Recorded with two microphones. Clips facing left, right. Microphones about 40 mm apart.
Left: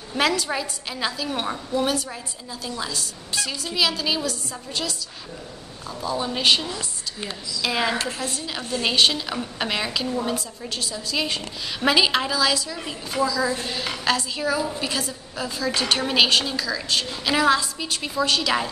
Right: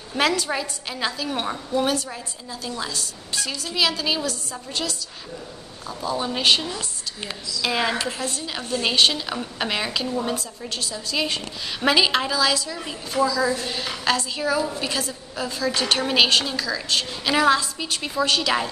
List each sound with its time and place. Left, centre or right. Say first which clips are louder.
0.1 s a woman's voice: even; centre